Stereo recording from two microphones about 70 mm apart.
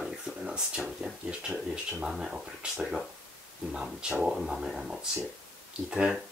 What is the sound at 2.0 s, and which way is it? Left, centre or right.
Speech, centre.